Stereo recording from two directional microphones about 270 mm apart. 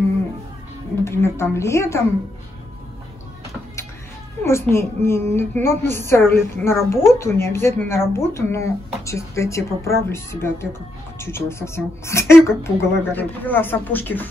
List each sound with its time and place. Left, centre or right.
1.0 s speech: centre
4.4 s speech: centre